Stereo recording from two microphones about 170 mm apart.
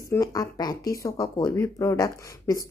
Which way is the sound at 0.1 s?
20° left (ahead or behind).